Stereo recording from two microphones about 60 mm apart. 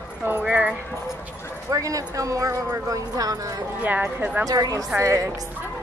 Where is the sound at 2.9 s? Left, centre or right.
Right.